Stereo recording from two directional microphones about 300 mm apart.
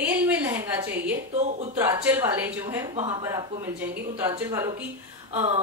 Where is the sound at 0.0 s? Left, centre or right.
Centre.